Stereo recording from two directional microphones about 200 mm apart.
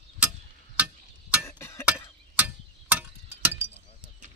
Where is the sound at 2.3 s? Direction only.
10° right (ahead or behind).